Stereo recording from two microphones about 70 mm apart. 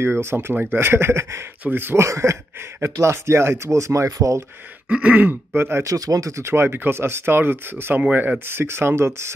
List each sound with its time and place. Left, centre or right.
0.0 s speech: right
2.0 s speech: right
4.8 s throat clearing: centre
5.3 s speech: right
5.9 s speech: right